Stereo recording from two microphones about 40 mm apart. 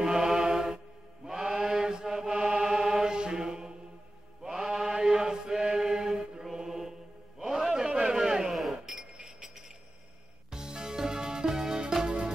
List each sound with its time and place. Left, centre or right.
0.0 s mantra: centre
1.2 s chant: centre
4.4 s mantra: centre
7.3 s a sound: centre
8.5 s a sound: centre
9.1 s chink: centre
10.5 s music: centre